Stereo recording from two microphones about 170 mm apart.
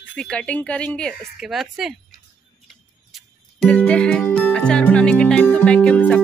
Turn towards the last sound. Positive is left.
turn(degrees=5)  # may be behind; listen again after turning